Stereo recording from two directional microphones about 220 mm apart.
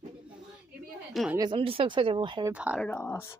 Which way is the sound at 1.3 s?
20° right (ahead or behind).